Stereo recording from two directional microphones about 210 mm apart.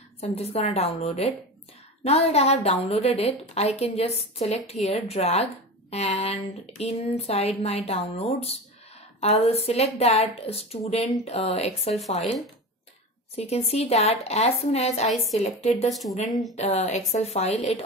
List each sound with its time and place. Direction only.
0.2 s a woman's voice: 30° left (ahead or behind)
13.4 s a woman's voice: 30° left (ahead or behind)
15.0 s speech: centre (ahead or behind)
16.5 s a woman's voice: 30° left (ahead or behind)